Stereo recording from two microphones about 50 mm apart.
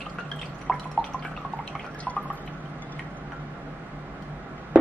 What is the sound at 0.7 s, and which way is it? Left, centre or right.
Drip, centre.